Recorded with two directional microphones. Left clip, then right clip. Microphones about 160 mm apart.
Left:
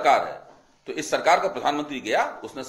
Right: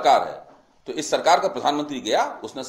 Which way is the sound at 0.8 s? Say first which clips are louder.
Right 2 dB; 45° right (ahead or behind).